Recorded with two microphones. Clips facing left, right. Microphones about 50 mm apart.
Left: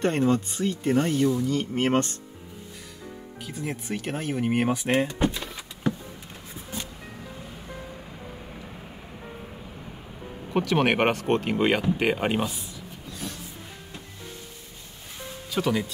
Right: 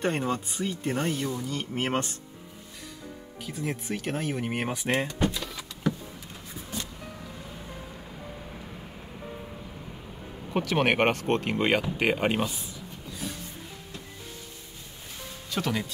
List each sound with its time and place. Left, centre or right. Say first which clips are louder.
0.0 s speech: left 5 dB; centre
3.4 s speech: even; centre
5.2 s vehicle: left 2 dB; left
10.5 s speech: left 2 dB; centre
13.1 s music: even; centre
15.5 s speech: left 4 dB; centre